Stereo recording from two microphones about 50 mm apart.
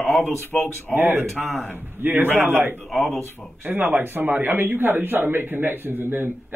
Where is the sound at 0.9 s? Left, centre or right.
Right.